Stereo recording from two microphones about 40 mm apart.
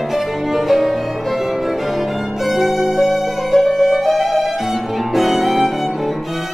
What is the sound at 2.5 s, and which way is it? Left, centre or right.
Violin, centre.